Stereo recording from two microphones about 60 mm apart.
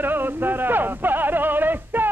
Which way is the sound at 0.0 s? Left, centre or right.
Right.